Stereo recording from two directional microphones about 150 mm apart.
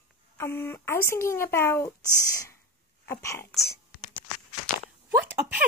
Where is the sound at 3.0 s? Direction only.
20° left (ahead or behind).